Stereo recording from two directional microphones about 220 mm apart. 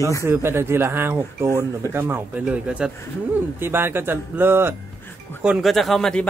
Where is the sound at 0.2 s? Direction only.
10° right (ahead or behind).